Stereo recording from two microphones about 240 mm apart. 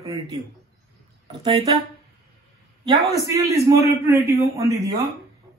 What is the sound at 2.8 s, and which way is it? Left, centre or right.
Speech, centre.